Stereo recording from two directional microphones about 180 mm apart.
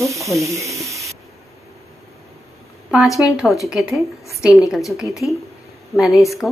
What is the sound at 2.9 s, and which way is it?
A woman's voice, centre (ahead or behind).